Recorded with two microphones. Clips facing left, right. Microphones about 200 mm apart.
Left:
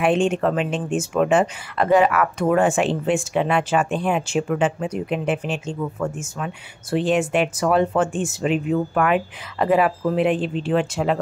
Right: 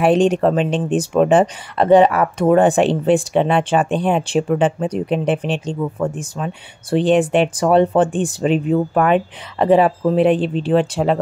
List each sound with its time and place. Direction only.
0.0 s speech: 35° right (ahead or behind)